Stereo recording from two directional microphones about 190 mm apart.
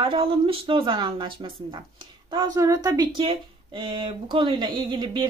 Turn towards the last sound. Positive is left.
turn(degrees=-25)  # may be behind; listen again after turning